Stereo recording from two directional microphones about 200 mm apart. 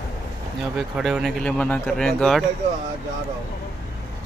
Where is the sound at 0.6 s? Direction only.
Centre (ahead or behind).